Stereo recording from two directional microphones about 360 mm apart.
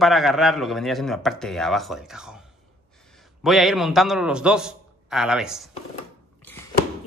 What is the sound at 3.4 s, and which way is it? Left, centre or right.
A man's voice, centre.